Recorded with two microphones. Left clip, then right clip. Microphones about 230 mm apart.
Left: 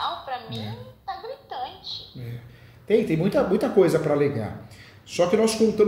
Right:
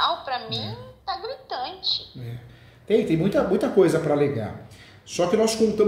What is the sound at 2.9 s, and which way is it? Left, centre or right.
Speech, centre.